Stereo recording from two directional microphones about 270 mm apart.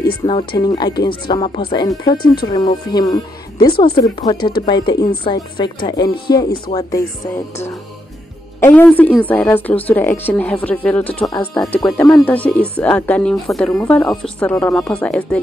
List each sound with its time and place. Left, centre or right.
0.2 s speech: centre
3.5 s speech: left
3.8 s speech: centre
8.5 s speech: centre